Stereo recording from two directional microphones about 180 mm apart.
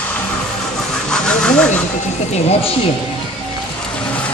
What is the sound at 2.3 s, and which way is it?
Speech, 35° left (ahead or behind).